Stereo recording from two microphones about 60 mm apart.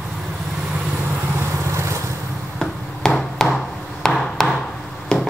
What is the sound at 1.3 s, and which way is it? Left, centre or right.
Vehicle, right.